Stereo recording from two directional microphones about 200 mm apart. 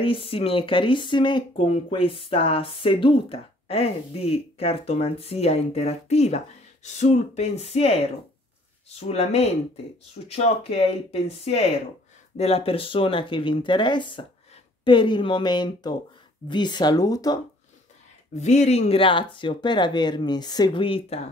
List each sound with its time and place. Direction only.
0.0 s speech: 25° left (ahead or behind)
18.4 s speech: 35° left (ahead or behind)